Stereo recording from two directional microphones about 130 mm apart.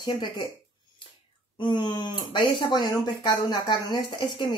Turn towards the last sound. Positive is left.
turn(degrees=40)  # may be behind; listen again after turning